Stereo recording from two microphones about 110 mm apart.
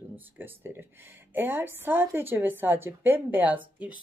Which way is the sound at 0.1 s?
20° right (ahead or behind).